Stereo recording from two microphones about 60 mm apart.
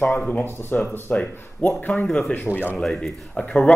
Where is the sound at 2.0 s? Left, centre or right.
Centre.